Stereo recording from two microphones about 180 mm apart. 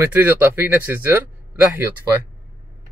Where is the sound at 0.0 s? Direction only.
10° right (ahead or behind).